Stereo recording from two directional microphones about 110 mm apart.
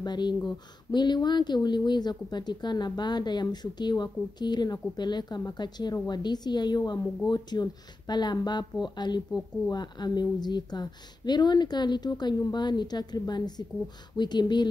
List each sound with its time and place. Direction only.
0.0 s speech: 40° left (ahead or behind)